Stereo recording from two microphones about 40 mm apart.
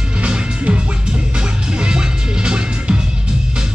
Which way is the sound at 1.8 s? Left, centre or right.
Right.